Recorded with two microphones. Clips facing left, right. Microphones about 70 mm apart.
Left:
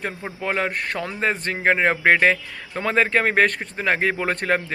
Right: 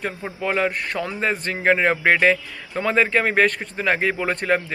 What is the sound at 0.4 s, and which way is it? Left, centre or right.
Speech, left.